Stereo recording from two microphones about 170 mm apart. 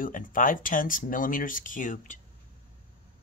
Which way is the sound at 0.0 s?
55° left (ahead or behind).